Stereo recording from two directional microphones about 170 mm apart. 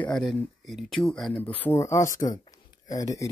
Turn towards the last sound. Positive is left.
turn(degrees=20)  # may be behind; listen again after turning